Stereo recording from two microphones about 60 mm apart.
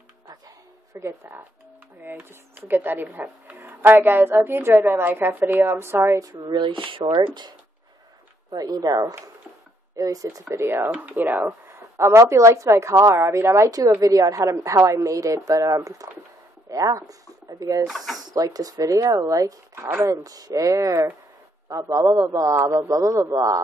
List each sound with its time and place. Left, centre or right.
0.9 s speech: right
2.0 s a woman's voice: right
8.5 s speech: right
9.9 s a woman's voice: right
10.5 s a woman's voice: right
11.7 s a woman's voice: right
13.7 s a woman's voice: right
17.8 s speech: centre
18.2 s speech: right
19.7 s speech: right
20.1 s a woman's voice: right